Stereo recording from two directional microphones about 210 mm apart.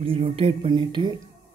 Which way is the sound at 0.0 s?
25° right (ahead or behind).